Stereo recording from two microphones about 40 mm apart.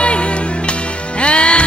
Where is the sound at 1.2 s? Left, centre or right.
Left.